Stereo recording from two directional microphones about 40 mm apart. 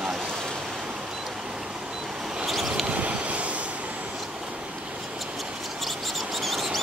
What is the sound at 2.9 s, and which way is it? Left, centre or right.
Vehicle, right.